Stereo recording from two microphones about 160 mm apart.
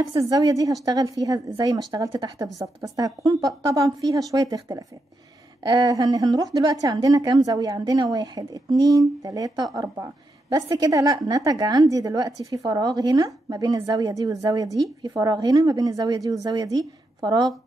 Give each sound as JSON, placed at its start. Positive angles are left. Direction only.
{"t": 0.0, "sound": "a woman's voice", "side_deg": -25}